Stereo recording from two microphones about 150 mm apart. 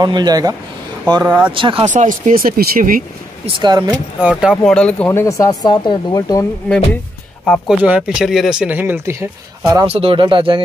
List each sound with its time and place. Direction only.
0.0 s speech: 30° right (ahead or behind)
1.2 s speech: 10° right (ahead or behind)
1.5 s speech: 35° right (ahead or behind)
1.9 s speech: 55° right (ahead or behind); by 3.0 s 75° right (ahead or behind)
3.5 s speech: 30° right (ahead or behind)
4.2 s speech: 5° right (ahead or behind)
4.7 s speech: 10° left (ahead or behind)
5.2 s speech: 20° left (ahead or behind)
7.4 s speech: 5° left (ahead or behind)
7.8 s speech: 5° right (ahead or behind); by 9.8 s 25° right (ahead or behind)
9.8 s speech: 40° right (ahead or behind)